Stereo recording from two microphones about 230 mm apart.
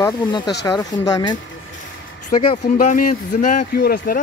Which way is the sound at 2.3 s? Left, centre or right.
Left.